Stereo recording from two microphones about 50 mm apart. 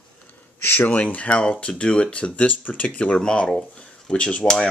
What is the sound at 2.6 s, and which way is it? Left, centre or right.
Speech, left.